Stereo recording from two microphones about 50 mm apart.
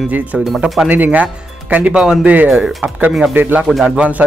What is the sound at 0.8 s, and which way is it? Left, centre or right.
Speech, right.